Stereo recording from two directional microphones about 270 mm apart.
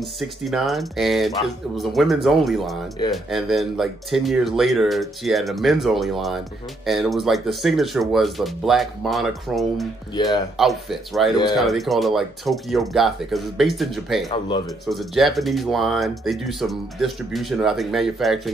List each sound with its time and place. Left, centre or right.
0.0 s speech: centre
10.1 s speech: centre
10.6 s speech: centre